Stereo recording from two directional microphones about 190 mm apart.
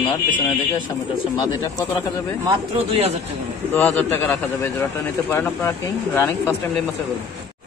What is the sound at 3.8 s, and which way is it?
Speech, 10° left (ahead or behind).